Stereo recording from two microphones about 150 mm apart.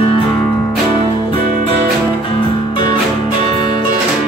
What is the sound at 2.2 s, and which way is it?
Music, 35° left (ahead or behind).